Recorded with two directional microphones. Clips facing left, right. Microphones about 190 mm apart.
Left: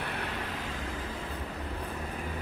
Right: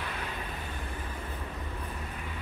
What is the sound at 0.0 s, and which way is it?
Vehicle, 65° left (ahead or behind).